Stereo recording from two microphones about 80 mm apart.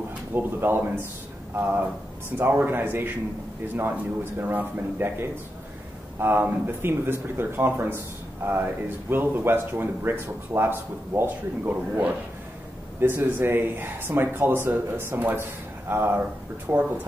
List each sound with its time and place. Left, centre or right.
0.3 s speech: right
6.1 s speech: right
13.0 s speech: right